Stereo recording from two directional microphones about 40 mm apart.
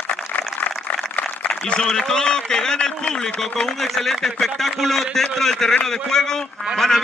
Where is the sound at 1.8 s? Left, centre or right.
Centre.